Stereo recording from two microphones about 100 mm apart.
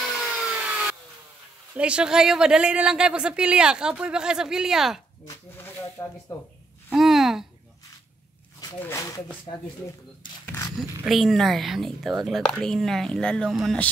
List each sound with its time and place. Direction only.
0.0 s wood: 5° right (ahead or behind)
1.8 s speech: 10° right (ahead or behind)
5.2 s speech: 35° left (ahead or behind)
5.7 s snake: 20° left (ahead or behind)
7.0 s speech: centre (ahead or behind)
8.7 s speech: 25° left (ahead or behind)
10.8 s speech: centre (ahead or behind)